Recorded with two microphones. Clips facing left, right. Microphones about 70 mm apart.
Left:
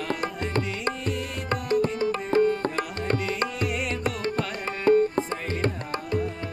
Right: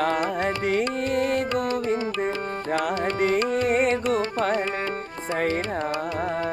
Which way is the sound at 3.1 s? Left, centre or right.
Right.